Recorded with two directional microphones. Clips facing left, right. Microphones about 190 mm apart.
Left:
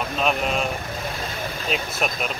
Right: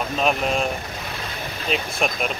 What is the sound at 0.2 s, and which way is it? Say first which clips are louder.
Speech: right 1 dB; centre (ahead or behind).